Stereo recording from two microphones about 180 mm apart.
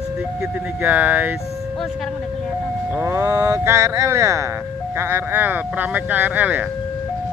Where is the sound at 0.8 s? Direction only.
10° right (ahead or behind).